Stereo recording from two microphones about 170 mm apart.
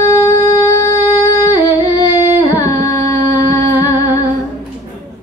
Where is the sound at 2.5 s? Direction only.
20° left (ahead or behind).